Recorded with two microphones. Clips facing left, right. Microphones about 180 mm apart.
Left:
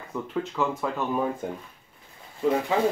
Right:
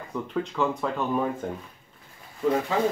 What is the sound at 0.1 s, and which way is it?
Speech, 5° left (ahead or behind).